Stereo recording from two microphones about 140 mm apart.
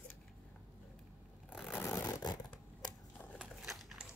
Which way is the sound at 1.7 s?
20° left (ahead or behind).